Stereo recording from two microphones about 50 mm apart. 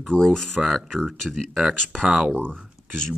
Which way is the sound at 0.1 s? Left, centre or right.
Centre.